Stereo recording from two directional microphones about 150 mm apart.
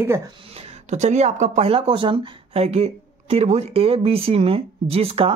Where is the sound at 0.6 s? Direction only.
50° right (ahead or behind).